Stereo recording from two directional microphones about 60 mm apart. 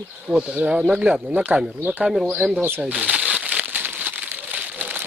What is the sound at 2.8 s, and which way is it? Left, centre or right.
Crumpling, right.